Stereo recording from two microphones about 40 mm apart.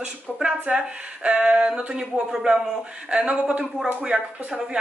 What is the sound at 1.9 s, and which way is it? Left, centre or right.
Speech, centre.